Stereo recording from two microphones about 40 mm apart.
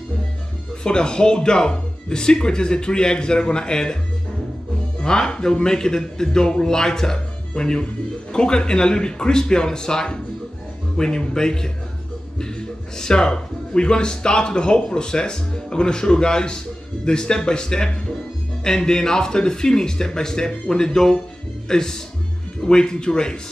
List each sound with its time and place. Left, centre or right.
0.8 s speech: left
5.0 s a man's voice: centre